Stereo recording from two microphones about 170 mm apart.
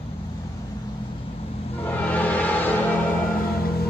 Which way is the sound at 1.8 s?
10° left (ahead or behind).